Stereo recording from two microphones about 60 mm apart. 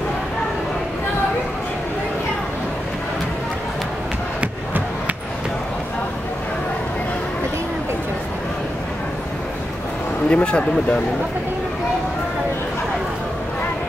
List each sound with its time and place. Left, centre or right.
10.3 s speech: left